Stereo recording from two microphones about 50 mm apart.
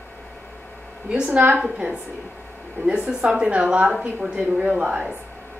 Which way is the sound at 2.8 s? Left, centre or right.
Right.